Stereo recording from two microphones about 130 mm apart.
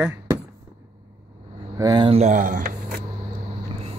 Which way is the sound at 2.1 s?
65° right (ahead or behind).